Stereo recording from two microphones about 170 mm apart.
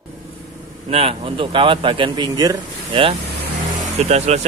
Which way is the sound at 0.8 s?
35° right (ahead or behind).